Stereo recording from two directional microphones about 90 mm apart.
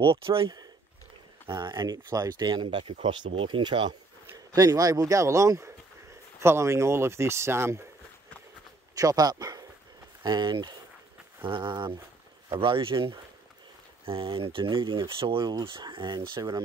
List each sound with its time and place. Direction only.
0.0 s speech: 85° right
1.6 s speech: 50° right (ahead or behind)
4.6 s speech: 40° right (ahead or behind)
8.9 s speech: 45° right (ahead or behind); by 12.0 s 65° right (ahead or behind)
12.5 s speech: 75° right (ahead or behind)
14.0 s speech: 85° right; by 16.6 s 50° right (ahead or behind)